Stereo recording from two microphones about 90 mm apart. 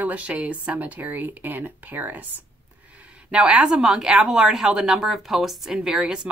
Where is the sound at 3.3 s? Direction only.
15° right (ahead or behind).